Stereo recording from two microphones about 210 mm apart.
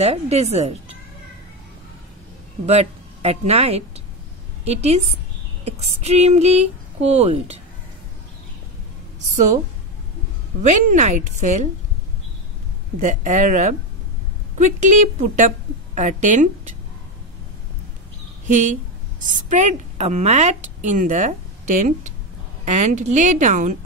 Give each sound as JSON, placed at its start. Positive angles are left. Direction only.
{"t": 0.0, "sound": "a woman's voice", "side_deg": -30}
{"t": 2.6, "sound": "a woman's voice", "side_deg": -30}
{"t": 10.6, "sound": "a woman's voice", "side_deg": -35}
{"t": 13.0, "sound": "a woman's voice", "side_deg": -35}
{"t": 18.5, "sound": "a woman's voice", "side_deg": -35}